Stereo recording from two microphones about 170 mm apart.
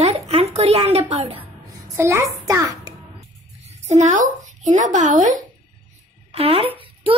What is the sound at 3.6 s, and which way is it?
A woman's voice, 40° right (ahead or behind).